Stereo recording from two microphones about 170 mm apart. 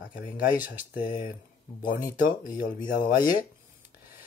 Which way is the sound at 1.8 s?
25° left (ahead or behind).